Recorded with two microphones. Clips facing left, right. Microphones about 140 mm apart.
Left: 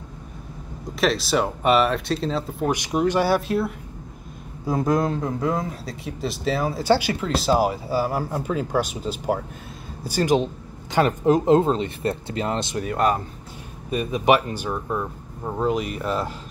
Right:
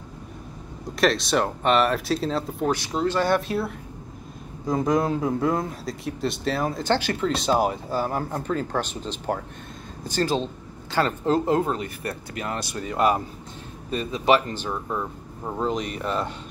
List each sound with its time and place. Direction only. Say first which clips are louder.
0.9 s speech: even; centre (ahead or behind)
2.7 s speech: left 4 dB; 15° left (ahead or behind)
3.3 s speech: left 2 dB; centre (ahead or behind); by 12.8 s 25° left (ahead or behind)
13.8 s speech: left 2 dB; 15° left (ahead or behind)